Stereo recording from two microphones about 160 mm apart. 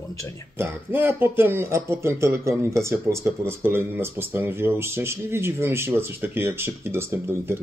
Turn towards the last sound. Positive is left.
turn(degrees=-15)  # may be behind; listen again after turning